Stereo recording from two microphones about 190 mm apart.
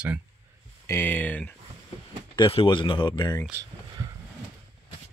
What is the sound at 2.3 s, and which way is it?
Speech, 25° left (ahead or behind).